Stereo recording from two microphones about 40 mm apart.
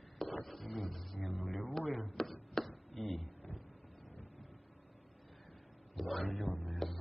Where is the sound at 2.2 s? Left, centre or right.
Centre.